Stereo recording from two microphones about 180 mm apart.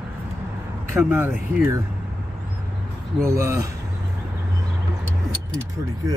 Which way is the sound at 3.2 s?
15° right (ahead or behind).